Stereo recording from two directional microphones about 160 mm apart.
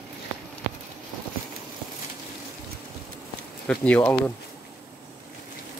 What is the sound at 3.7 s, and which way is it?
Speech, 10° left (ahead or behind).